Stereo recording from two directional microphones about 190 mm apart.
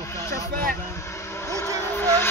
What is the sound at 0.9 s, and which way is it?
Vehicle, 15° left (ahead or behind).